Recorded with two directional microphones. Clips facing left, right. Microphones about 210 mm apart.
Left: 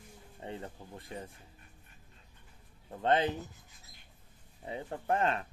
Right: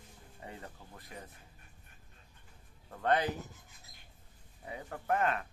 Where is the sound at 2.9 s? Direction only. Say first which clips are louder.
Left 2 dB; 25° left (ahead or behind).